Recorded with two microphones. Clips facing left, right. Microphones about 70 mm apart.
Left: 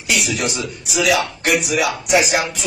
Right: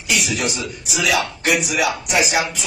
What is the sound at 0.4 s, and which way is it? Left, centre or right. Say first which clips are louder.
Speech: left 1 dB; left.